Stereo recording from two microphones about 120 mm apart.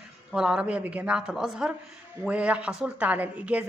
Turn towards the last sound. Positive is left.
turn(degrees=-10)  # may be behind; listen again after turning